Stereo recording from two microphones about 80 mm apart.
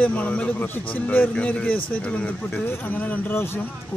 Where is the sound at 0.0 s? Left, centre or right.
Centre.